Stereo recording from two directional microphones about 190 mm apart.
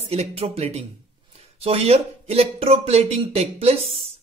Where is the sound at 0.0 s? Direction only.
35° right (ahead or behind).